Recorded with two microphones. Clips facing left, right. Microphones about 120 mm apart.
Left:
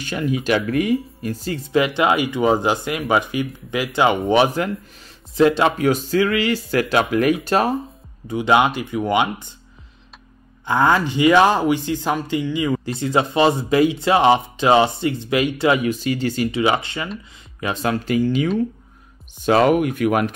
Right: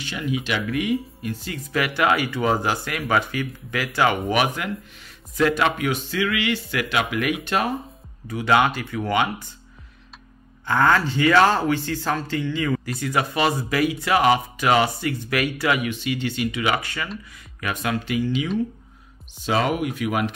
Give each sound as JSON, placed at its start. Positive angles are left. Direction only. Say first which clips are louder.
{"t": 0.0, "sound": "speech", "louder": "left 5 dB", "side_deg": 45}
{"t": 4.3, "sound": "speech", "louder": "left 6 dB", "side_deg": 30}
{"t": 5.9, "sound": "speech", "louder": "left 6 dB", "side_deg": 40}
{"t": 8.3, "sound": "speech", "louder": "left 3 dB", "side_deg": 20}
{"t": 10.6, "sound": "speech", "louder": "left 2 dB", "side_deg": 15}
{"t": 16.6, "sound": "speech", "louder": "left 4 dB", "side_deg": 25}